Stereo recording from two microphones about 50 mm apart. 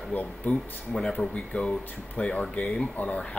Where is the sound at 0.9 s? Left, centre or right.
Left.